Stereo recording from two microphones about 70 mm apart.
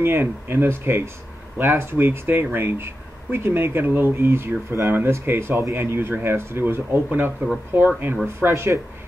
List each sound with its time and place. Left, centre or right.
0.0 s speech: right
8.4 s speech: right